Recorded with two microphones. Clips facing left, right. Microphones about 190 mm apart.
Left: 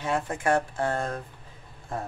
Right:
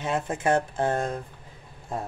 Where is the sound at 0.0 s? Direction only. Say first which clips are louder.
Right 1 dB; 20° right (ahead or behind).